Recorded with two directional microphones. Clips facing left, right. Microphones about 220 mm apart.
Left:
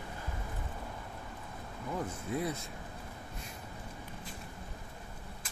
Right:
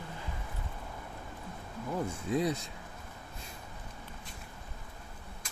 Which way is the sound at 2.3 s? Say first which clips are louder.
Right 5 dB; 15° right (ahead or behind).